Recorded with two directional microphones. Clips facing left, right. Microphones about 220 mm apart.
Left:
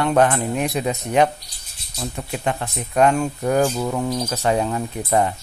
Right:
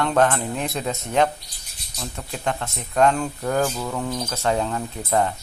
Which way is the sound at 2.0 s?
15° left (ahead or behind).